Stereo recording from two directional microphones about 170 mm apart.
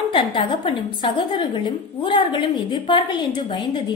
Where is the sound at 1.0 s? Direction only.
30° left (ahead or behind).